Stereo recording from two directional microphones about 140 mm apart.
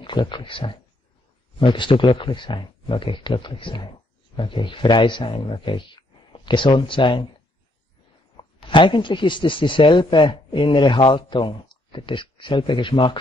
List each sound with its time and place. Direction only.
0.0 s speech: 35° left (ahead or behind)
8.6 s speech: 35° left (ahead or behind)